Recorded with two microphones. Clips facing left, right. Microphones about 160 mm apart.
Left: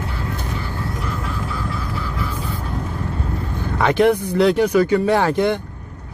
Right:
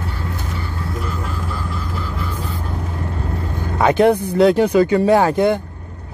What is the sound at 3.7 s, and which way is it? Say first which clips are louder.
Speech: right 2 dB; 30° right (ahead or behind).